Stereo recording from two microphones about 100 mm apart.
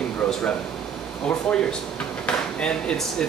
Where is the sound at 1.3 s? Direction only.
10° left (ahead or behind).